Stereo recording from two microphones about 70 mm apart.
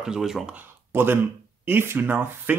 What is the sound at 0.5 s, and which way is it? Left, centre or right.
Speech, right.